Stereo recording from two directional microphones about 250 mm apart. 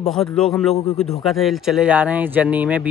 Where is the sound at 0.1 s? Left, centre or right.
Centre.